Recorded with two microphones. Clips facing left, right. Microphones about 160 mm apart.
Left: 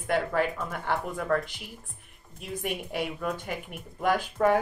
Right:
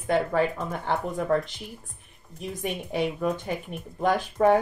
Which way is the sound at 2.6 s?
20° right (ahead or behind).